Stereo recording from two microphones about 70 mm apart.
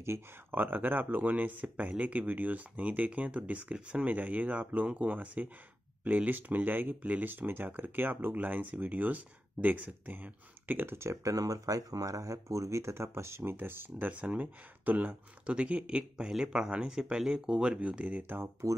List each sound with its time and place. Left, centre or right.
0.5 s speech: right
18.0 s speech: right